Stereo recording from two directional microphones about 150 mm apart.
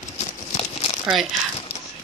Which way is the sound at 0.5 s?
45° left (ahead or behind).